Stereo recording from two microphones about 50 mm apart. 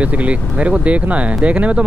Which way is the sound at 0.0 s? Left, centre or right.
Right.